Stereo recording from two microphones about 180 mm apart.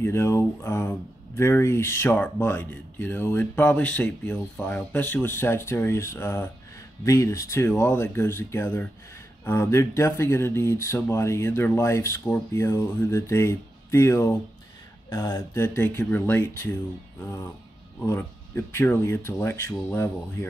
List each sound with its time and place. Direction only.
0.0 s speech: 15° left (ahead or behind)